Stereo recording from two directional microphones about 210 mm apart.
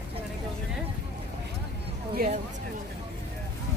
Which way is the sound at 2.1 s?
40° right (ahead or behind).